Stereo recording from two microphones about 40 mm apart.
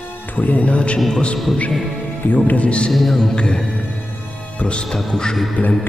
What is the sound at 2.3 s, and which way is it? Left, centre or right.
Speech, left.